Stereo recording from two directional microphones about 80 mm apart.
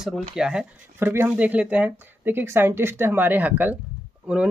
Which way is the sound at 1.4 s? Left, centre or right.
Centre.